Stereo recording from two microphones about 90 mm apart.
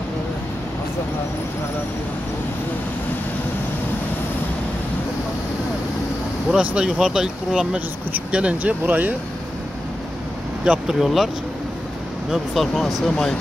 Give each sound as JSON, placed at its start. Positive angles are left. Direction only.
{"t": 6.5, "sound": "speech", "side_deg": -10}
{"t": 10.6, "sound": "speech", "side_deg": -10}
{"t": 12.3, "sound": "speech", "side_deg": 0}